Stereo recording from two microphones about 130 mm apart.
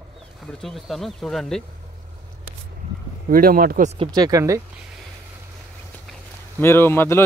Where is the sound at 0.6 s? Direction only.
Centre (ahead or behind).